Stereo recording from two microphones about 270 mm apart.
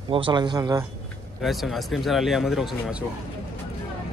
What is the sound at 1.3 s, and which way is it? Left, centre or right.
Speech, centre.